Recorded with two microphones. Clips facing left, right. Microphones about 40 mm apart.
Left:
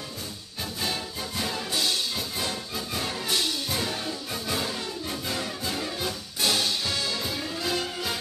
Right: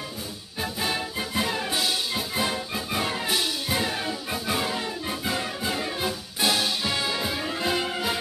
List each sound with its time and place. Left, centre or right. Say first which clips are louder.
0.6 s music: right 4 dB; centre